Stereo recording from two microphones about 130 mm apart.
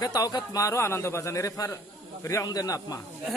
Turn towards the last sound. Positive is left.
turn(degrees=30)  # may be behind; listen again after turning